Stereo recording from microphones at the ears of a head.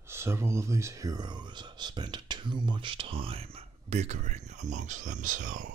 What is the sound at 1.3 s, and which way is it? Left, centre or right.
Speech, right.